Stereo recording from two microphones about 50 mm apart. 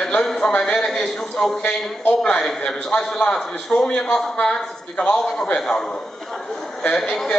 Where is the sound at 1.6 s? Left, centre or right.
Left.